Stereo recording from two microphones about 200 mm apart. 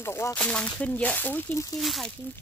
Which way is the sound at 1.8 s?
Centre (ahead or behind).